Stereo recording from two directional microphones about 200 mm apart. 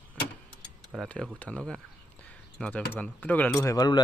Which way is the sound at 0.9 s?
5° left (ahead or behind).